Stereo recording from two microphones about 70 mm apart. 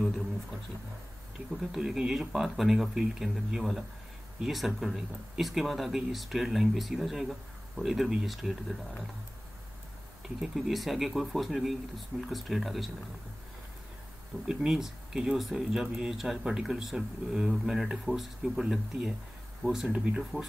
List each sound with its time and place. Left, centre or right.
1.6 s speech: centre
10.2 s speech: centre
14.5 s speech: centre
19.9 s speech: right